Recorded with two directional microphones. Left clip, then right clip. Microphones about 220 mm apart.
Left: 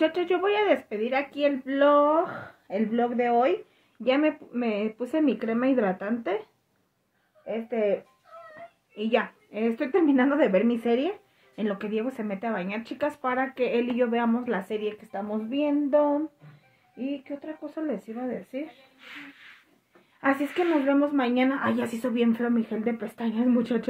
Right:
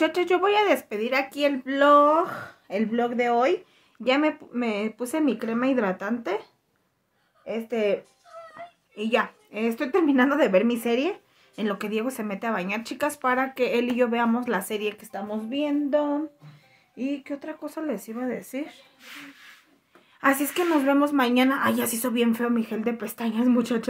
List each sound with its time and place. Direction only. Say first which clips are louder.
0.0 s a woman's voice: right 2 dB; 10° right (ahead or behind)
7.4 s a woman's voice: right 1 dB; 15° right (ahead or behind)
8.9 s a woman's voice: right 1 dB; 5° right (ahead or behind)
16.9 s a woman's voice: right 3 dB; 20° right (ahead or behind)
20.2 s a woman's voice: right 2 dB; 10° right (ahead or behind)